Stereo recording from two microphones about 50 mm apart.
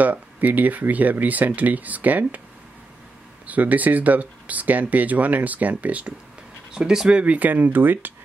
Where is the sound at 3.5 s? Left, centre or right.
Right.